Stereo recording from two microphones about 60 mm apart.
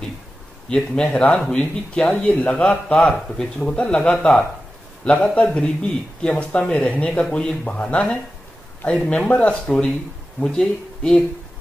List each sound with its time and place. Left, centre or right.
0.7 s a man's voice: centre